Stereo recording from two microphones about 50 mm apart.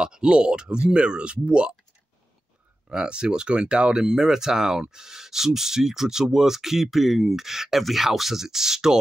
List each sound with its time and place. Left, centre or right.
0.0 s speech: centre
2.9 s speech: centre